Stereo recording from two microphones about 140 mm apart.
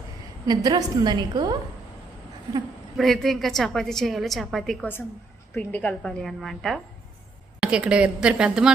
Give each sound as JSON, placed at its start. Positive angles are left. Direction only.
{"t": 0.5, "sound": "a woman's voice", "side_deg": -30}
{"t": 3.0, "sound": "a woman's voice", "side_deg": 0}
{"t": 5.5, "sound": "a woman's voice", "side_deg": 10}